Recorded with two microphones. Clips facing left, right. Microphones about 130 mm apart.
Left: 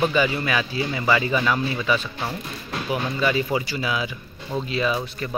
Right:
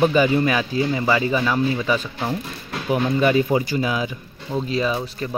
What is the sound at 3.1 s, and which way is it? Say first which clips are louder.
Speech: right 5 dB; 45° right (ahead or behind).